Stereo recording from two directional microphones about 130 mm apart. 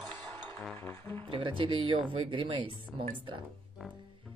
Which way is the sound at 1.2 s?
45° right (ahead or behind).